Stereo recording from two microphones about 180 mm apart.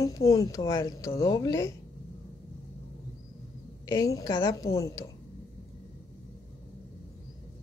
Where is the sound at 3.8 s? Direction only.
20° left (ahead or behind).